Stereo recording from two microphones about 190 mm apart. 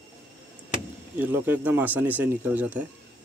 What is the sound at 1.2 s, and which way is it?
Speech, 10° right (ahead or behind).